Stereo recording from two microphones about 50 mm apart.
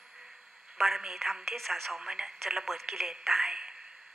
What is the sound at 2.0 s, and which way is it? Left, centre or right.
A woman's voice, centre.